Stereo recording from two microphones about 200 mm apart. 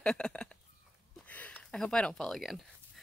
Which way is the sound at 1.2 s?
5° left (ahead or behind).